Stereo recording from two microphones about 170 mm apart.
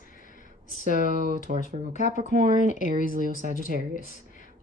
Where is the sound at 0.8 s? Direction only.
55° right (ahead or behind).